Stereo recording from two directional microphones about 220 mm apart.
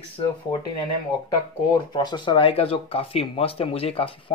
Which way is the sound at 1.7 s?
20° left (ahead or behind).